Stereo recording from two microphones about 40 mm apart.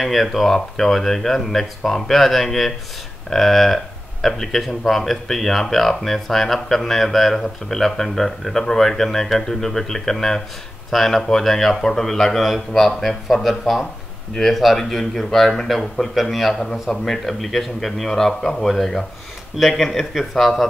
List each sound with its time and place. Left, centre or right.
0.0 s a man's voice: centre